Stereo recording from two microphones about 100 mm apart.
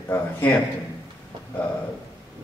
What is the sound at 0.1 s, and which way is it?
Speech, 20° left (ahead or behind).